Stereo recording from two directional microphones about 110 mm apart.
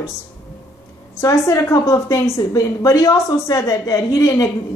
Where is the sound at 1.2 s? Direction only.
30° left (ahead or behind).